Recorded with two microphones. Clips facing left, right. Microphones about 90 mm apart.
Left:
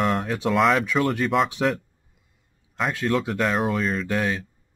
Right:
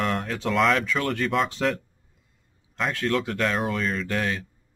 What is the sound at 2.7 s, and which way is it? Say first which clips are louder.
Speech: left 1 dB; 10° left (ahead or behind).